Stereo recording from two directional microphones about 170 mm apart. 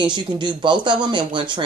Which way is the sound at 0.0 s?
25° right (ahead or behind).